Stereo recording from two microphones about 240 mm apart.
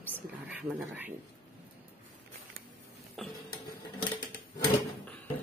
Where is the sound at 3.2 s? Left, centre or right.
Centre.